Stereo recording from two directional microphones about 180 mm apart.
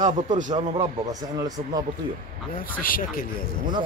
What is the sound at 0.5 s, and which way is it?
A man's voice, 20° right (ahead or behind).